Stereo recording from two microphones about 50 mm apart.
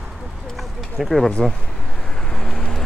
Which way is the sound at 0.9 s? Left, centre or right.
Centre.